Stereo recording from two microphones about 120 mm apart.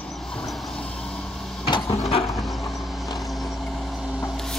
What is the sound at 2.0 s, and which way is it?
Mechanisms, 55° left (ahead or behind).